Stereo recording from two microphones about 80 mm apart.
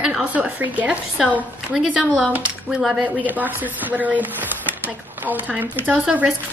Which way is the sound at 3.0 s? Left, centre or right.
Right.